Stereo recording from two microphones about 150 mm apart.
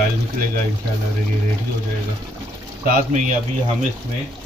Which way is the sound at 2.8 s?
60° right (ahead or behind).